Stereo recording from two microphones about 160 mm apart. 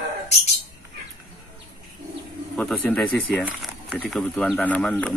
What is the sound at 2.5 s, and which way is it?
Speech, 5° left (ahead or behind).